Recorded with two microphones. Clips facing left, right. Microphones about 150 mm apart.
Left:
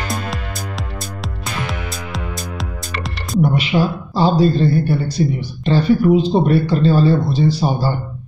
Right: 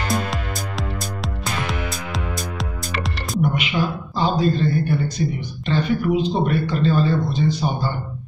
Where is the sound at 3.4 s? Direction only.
35° left (ahead or behind).